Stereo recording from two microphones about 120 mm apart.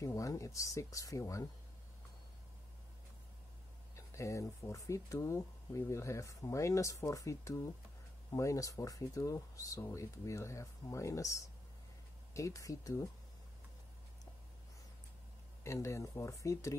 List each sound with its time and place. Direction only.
0.0 s speech: 25° left (ahead or behind)
3.9 s speech: 25° left (ahead or behind)
12.4 s speech: 25° left (ahead or behind)
15.6 s speech: 25° left (ahead or behind)